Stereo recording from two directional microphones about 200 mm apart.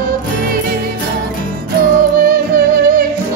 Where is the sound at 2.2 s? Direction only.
45° right (ahead or behind).